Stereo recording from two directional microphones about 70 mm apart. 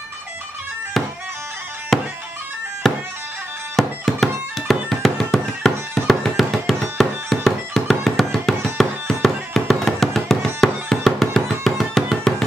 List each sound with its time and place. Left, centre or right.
1.9 s music: centre